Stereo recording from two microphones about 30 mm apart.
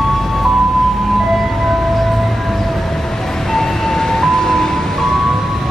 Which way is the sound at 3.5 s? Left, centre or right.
Centre.